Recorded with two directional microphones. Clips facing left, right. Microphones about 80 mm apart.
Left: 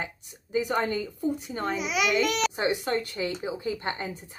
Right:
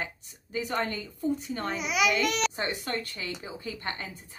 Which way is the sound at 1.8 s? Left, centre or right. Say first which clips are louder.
Even; centre.